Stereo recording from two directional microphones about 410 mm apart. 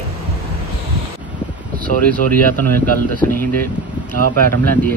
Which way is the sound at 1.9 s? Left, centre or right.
Centre.